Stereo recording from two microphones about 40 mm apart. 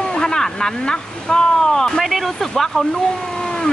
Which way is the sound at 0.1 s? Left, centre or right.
Centre.